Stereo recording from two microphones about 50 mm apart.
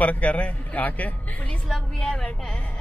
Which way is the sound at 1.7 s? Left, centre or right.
Centre.